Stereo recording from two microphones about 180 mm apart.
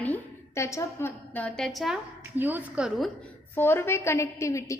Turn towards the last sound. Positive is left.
turn(degrees=15)  # may be behind; listen again after turning